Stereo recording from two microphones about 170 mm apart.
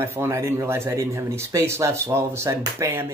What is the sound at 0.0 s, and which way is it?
Speech, 15° right (ahead or behind).